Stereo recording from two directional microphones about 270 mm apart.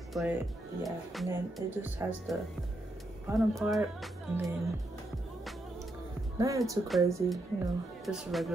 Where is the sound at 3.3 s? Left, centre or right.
Centre.